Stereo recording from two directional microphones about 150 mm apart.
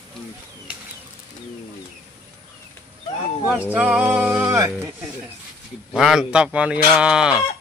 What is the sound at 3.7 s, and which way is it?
Music, 10° right (ahead or behind).